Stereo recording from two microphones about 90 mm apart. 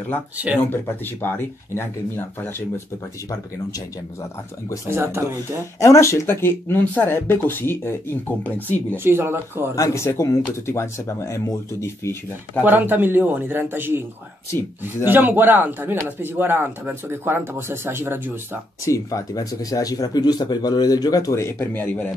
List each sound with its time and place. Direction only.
0.7 s speech: 25° left (ahead or behind)
3.3 s speech: 35° left (ahead or behind)
4.8 s speech: 30° right (ahead or behind)
5.8 s speech: 35° left (ahead or behind)
8.9 s speech: 25° right (ahead or behind)
9.8 s speech: 30° left (ahead or behind)
12.6 s speech: 20° right (ahead or behind)
15.0 s speech: 20° right (ahead or behind)
18.9 s speech: 40° left (ahead or behind)
21.4 s speech: 25° left (ahead or behind)